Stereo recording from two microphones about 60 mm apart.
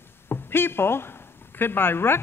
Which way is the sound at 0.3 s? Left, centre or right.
Left.